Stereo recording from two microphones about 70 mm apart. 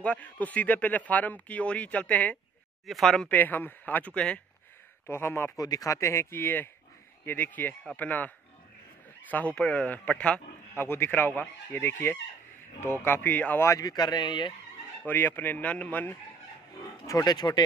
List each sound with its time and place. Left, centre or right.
0.0 s a man's voice: left
2.9 s speech: centre
3.3 s a man's voice: left
5.0 s speech: left
5.6 s speech: left
6.3 s a man's voice: left
9.3 s a man's voice: left
10.7 s a man's voice: left
13.7 s speech: left
15.0 s a man's voice: left
17.0 s speech: left
17.3 s speech: left